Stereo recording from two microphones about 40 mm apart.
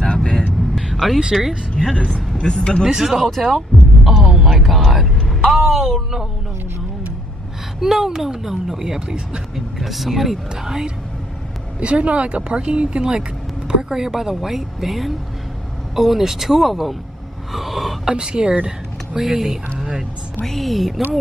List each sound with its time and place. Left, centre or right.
0.0 s vehicle: left
0.9 s speech: centre
2.1 s a man's voice: left
2.9 s speech: centre
7.8 s speech: centre
8.8 s speech: centre
9.8 s speech: centre
10.5 s speech: centre
11.8 s speech: right; by 16.9 s centre
17.5 s throat clearing: centre
18.0 s speech: right
19.1 s speech: centre
20.4 s speech: centre